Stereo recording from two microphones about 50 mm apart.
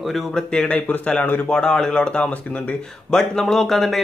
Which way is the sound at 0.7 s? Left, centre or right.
Left.